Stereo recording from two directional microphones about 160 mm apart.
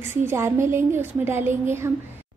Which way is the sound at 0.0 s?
15° right (ahead or behind).